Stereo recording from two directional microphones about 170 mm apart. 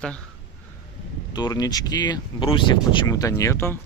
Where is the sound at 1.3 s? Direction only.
25° left (ahead or behind).